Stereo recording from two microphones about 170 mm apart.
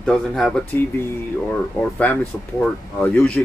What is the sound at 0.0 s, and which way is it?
A man's voice, 5° left (ahead or behind).